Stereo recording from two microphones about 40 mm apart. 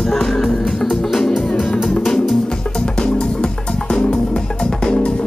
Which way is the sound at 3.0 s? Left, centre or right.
Left.